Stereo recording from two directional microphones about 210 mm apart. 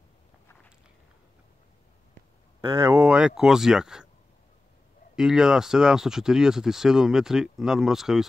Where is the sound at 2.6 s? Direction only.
25° right (ahead or behind).